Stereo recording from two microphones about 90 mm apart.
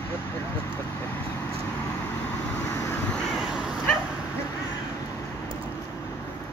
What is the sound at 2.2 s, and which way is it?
Vehicle, 20° left (ahead or behind).